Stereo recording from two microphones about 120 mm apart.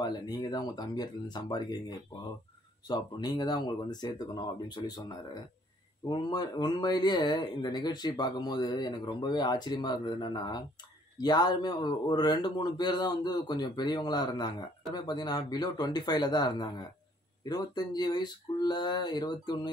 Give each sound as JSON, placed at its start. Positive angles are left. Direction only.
{"t": 0.0, "sound": "a man's voice", "side_deg": 35}